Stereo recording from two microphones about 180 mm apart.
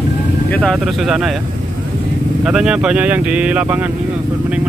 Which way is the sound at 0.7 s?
Centre (ahead or behind).